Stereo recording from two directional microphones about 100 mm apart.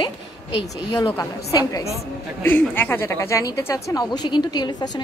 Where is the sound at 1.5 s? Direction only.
35° left (ahead or behind).